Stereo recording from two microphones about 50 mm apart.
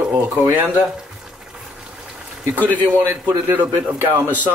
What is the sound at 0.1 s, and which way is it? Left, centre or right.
Speech, right.